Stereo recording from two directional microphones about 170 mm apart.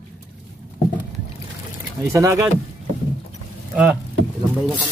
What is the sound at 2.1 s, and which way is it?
Speech, 20° right (ahead or behind).